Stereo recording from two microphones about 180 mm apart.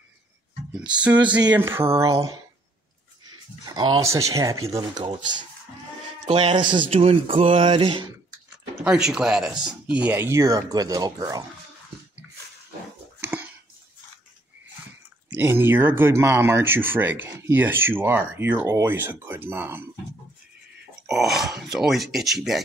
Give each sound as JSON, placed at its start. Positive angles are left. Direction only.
{"t": 1.0, "sound": "speech", "side_deg": -10}
{"t": 3.3, "sound": "speech", "side_deg": -25}
{"t": 6.2, "sound": "speech", "side_deg": -30}
{"t": 8.8, "sound": "speech", "side_deg": -5}
{"t": 13.2, "sound": "a sound", "side_deg": -10}
{"t": 15.2, "sound": "speech", "side_deg": -10}
{"t": 21.1, "sound": "speech", "side_deg": 0}